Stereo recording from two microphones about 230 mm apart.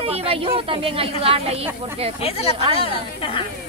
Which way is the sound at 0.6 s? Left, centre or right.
Right.